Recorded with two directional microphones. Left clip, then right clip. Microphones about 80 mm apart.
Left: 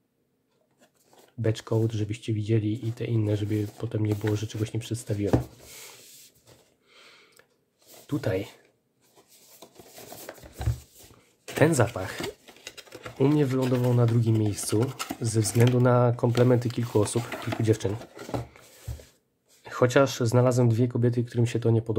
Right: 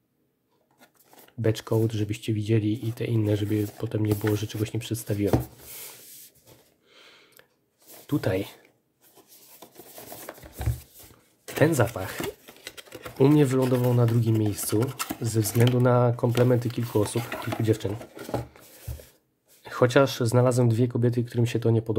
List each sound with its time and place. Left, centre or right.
1.4 s speech: right
5.7 s a sound: centre
8.1 s speech: right
9.9 s a sound: centre
11.1 s a sound: centre
11.6 s speech: centre
12.4 s sewing machine: right
13.4 s speech: right
14.1 s speech: centre
17.1 s speech: right
17.4 s speech: centre
18.1 s a sound: centre
19.6 s speech: centre